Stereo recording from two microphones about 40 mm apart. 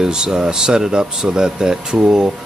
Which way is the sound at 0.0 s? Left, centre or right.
Centre.